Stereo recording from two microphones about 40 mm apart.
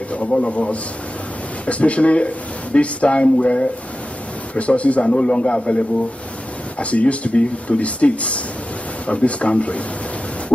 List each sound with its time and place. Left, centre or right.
0.1 s a man's voice: left